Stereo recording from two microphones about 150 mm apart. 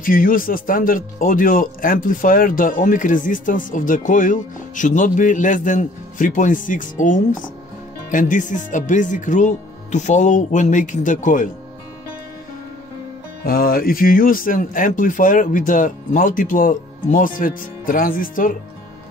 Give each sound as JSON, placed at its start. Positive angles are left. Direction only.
{"t": 0.0, "sound": "speech", "side_deg": 65}
{"t": 13.4, "sound": "speech", "side_deg": 80}